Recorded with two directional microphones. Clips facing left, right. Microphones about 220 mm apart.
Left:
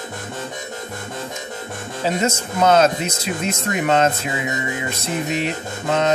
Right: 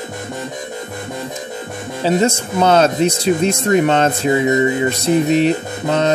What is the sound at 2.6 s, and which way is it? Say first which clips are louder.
Speech: right 2 dB; 30° right (ahead or behind).